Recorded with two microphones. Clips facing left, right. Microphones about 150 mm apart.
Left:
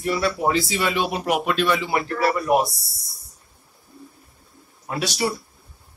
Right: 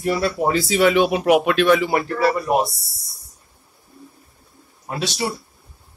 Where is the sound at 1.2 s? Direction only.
85° right; by 1.9 s 60° right (ahead or behind).